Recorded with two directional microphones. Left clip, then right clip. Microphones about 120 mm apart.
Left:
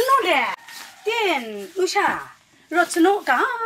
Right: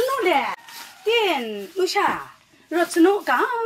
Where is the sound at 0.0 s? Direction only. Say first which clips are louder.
Left 4 dB; 15° left (ahead or behind).